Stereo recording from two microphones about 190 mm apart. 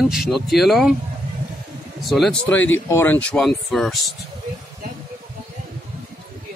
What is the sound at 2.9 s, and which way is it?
Speech, 10° left (ahead or behind).